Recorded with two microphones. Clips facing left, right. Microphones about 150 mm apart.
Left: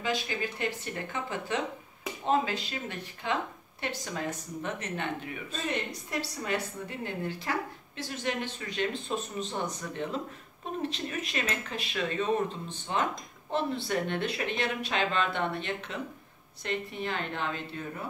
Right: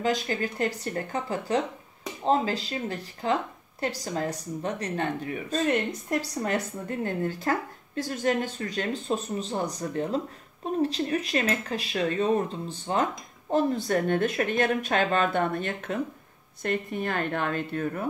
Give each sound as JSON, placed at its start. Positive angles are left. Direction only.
{"t": 0.0, "sound": "speech", "side_deg": -45}